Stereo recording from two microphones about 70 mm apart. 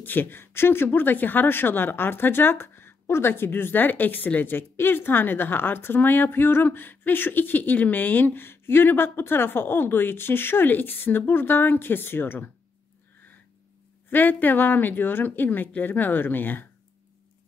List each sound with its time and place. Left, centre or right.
0.0 s speech: left
14.1 s speech: left